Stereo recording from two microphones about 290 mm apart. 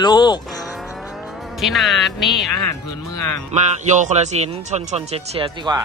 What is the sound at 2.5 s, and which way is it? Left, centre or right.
Music, left.